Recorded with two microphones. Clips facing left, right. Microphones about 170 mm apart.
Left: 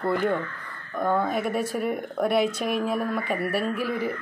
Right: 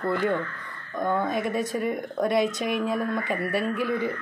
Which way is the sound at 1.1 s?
20° right (ahead or behind).